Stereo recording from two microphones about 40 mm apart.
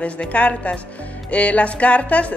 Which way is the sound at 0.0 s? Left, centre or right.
Left.